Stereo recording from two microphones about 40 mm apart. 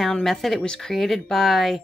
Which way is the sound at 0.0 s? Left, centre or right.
Centre.